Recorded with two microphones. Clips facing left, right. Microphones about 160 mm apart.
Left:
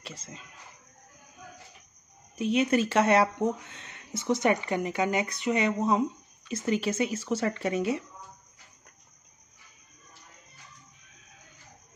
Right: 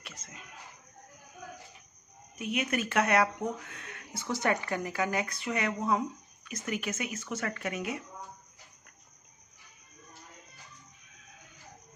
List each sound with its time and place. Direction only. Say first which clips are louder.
0.0 s speech: left 6 dB; 30° left (ahead or behind)
2.3 s speech: left 7 dB; 30° left (ahead or behind)